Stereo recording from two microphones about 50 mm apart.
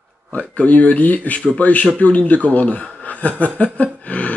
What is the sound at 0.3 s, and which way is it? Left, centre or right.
Speech, left.